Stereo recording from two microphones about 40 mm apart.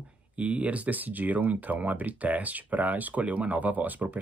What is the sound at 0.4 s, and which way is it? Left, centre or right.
Speech, right.